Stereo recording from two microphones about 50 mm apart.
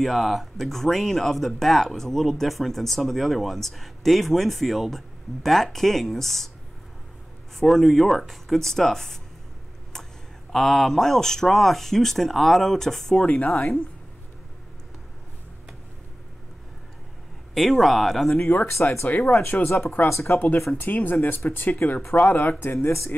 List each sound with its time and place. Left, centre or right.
0.0 s speech: centre
7.5 s speech: centre
10.5 s speech: centre
17.6 s speech: centre
18.7 s speech: left
19.0 s speech: left
19.4 s speech: left
20.7 s speech: left